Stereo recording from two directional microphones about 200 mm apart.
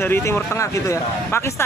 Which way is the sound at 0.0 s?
10° left (ahead or behind).